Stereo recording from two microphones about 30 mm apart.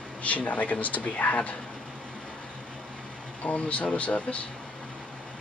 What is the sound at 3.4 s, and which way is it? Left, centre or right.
Speech, left.